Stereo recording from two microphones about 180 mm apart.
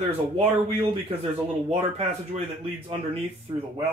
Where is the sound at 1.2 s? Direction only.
35° right (ahead or behind).